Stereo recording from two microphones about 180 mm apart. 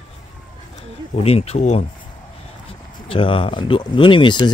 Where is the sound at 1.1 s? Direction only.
35° left (ahead or behind).